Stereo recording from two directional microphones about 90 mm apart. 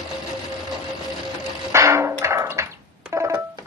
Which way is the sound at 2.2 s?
35° right (ahead or behind).